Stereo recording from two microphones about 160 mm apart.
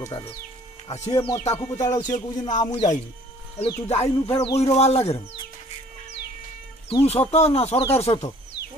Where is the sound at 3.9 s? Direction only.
40° left (ahead or behind).